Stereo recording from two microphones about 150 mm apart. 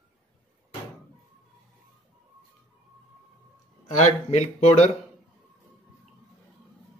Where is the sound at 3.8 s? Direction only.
55° left (ahead or behind).